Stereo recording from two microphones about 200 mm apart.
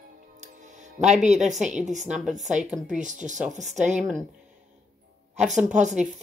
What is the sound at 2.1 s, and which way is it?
Speech, centre (ahead or behind).